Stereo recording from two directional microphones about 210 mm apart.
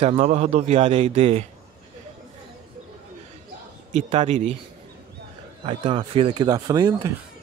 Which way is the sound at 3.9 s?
35° right (ahead or behind).